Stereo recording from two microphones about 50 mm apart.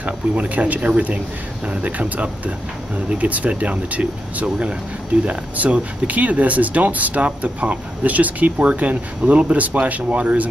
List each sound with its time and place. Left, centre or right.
0.0 s speech: right